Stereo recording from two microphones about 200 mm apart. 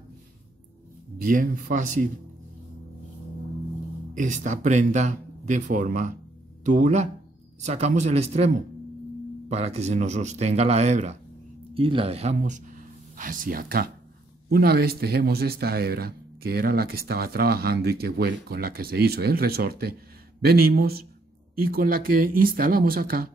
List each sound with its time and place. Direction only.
1.1 s speech: 45° right (ahead or behind)
4.1 s speech: 40° right (ahead or behind)
9.5 s speech: 30° right (ahead or behind)